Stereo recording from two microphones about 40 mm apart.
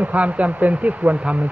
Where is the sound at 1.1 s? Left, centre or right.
Right.